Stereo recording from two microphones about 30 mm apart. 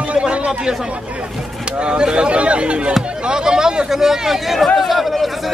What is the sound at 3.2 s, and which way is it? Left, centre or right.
A man's voice, right.